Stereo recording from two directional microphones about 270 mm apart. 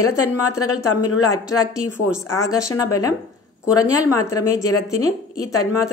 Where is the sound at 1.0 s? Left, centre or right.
Centre.